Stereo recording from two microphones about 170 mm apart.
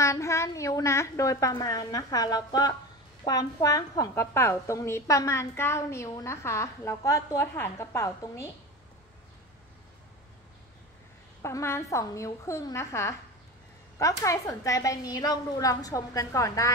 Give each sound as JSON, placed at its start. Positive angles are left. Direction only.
{"t": 0.0, "sound": "a woman's voice", "side_deg": 15}
{"t": 11.4, "sound": "a woman's voice", "side_deg": 15}